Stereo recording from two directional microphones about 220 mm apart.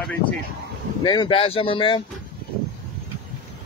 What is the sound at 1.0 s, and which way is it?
Speech, 20° left (ahead or behind).